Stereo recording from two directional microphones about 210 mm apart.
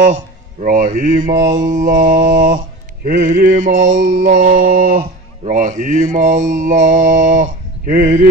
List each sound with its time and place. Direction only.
0.0 s speech: 35° right (ahead or behind)
1.4 s mantra: 35° right (ahead or behind)